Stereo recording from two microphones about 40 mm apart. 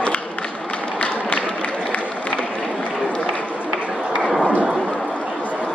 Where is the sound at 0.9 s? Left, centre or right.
Left.